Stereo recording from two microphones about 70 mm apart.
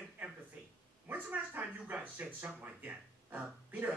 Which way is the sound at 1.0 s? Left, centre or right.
Right.